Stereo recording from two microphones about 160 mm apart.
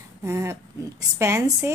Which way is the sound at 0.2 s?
15° right (ahead or behind).